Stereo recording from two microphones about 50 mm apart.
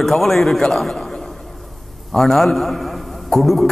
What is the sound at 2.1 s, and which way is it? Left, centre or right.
A man's voice, centre.